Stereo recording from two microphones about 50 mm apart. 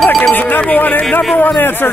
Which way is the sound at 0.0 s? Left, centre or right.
Centre.